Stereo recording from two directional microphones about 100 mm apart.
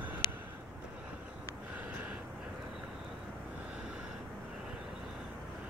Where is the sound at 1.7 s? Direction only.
15° right (ahead or behind).